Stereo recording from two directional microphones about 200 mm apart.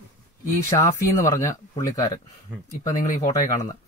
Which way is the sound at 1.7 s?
15° left (ahead or behind).